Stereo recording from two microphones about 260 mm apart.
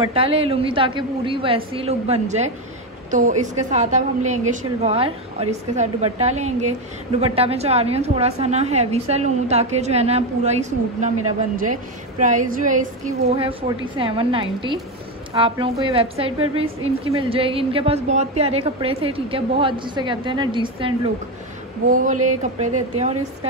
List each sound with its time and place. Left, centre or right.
0.0 s a woman's voice: right
21.8 s a sound: right
22.4 s a woman's voice: right